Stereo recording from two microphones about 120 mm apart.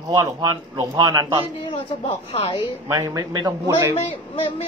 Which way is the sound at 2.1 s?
60° left (ahead or behind).